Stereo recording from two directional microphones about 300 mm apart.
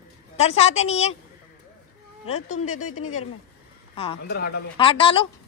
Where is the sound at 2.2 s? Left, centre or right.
Left.